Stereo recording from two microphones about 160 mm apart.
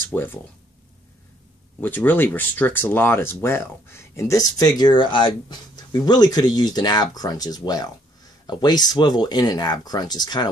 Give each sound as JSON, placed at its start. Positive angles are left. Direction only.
{"t": 0.1, "sound": "speech", "side_deg": 10}
{"t": 1.8, "sound": "speech", "side_deg": 10}